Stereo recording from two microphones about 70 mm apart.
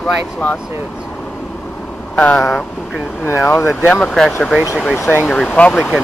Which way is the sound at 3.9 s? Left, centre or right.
Centre.